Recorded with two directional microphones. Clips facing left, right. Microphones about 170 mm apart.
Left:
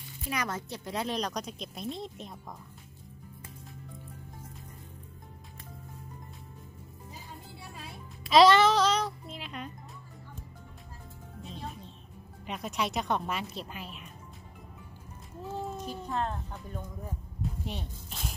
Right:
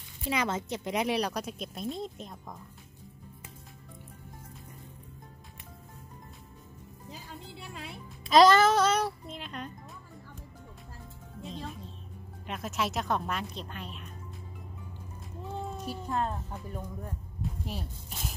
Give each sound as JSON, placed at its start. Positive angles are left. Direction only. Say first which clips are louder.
{"t": 0.3, "sound": "speech", "louder": "right 4 dB", "side_deg": -25}
{"t": 7.1, "sound": "music", "louder": "right 3 dB", "side_deg": -80}
{"t": 8.3, "sound": "music", "louder": "even", "side_deg": 0}
{"t": 12.4, "sound": "speech", "louder": "even", "side_deg": 0}
{"t": 15.4, "sound": "speech", "louder": "left 1 dB", "side_deg": 0}
{"t": 17.0, "sound": "music", "louder": "even", "side_deg": 0}